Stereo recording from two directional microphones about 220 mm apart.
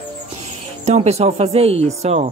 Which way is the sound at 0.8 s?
30° right (ahead or behind).